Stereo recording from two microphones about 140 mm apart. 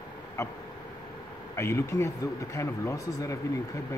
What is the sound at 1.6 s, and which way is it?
Speech, 20° left (ahead or behind).